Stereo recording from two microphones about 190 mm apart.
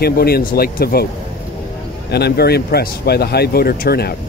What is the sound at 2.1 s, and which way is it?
Speech, 60° left (ahead or behind).